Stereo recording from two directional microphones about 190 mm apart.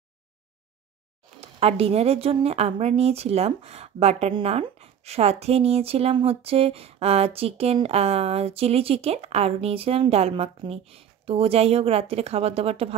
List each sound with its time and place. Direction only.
1.4 s a woman's voice: 30° right (ahead or behind)